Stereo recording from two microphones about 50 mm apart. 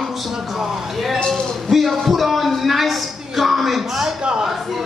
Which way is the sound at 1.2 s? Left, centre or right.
Centre.